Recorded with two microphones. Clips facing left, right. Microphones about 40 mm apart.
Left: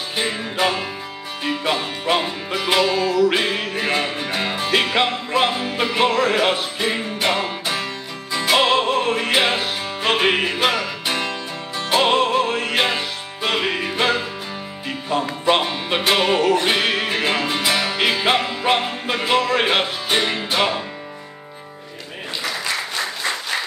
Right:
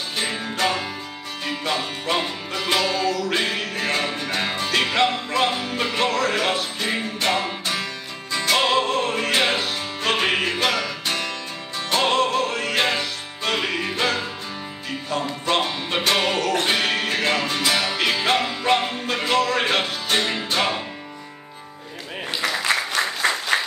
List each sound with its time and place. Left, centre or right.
0.2 s music: centre
23.5 s applause: right